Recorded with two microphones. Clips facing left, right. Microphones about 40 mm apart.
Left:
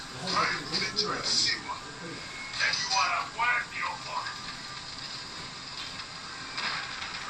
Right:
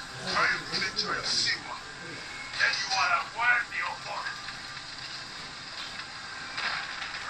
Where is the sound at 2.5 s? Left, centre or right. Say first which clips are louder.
Right 1 dB; centre.